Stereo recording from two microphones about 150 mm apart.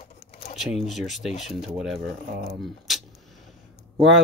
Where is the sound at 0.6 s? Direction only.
Centre (ahead or behind).